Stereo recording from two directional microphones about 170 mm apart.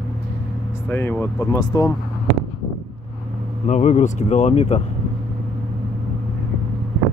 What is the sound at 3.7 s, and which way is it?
Speech, 45° left (ahead or behind).